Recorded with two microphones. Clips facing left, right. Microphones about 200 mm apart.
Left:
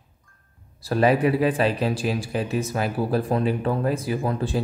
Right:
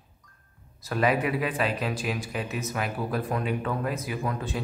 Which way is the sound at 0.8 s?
30° left (ahead or behind).